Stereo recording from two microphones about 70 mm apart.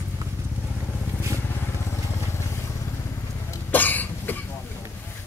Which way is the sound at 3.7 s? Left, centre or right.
Left.